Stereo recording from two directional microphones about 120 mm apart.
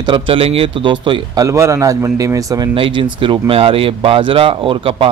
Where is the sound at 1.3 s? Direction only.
25° right (ahead or behind).